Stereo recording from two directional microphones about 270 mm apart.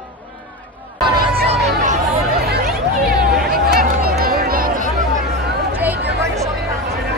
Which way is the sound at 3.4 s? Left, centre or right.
Right.